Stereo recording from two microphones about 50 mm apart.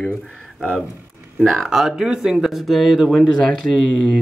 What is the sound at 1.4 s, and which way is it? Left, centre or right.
Speech, centre.